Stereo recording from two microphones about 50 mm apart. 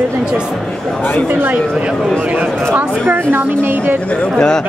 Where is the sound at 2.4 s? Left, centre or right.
Right.